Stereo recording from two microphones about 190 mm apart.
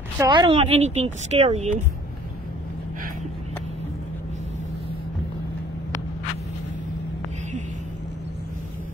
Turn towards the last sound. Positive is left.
turn(degrees=-40)  # may be behind; listen again after turning